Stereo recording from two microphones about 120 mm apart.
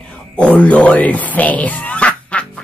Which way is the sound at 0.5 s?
10° left (ahead or behind).